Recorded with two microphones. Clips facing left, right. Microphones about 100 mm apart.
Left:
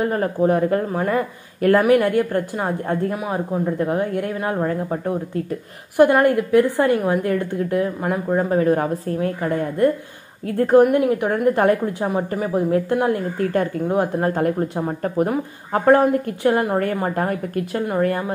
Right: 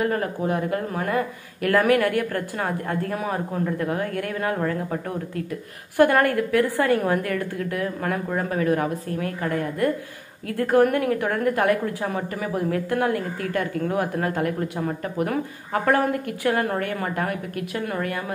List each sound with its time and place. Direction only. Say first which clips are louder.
0.0 s a woman's voice: left 5 dB; 30° left (ahead or behind); by 3.6 s 15° left (ahead or behind)
3.6 s a woman's voice: left 4 dB; 25° left (ahead or behind)
13.8 s a woman's voice: left 4 dB; 20° left (ahead or behind)
14.2 s a woman's voice: left 5 dB; 30° left (ahead or behind)